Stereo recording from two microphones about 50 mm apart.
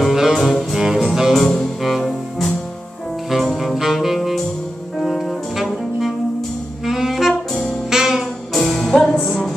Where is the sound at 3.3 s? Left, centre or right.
Centre.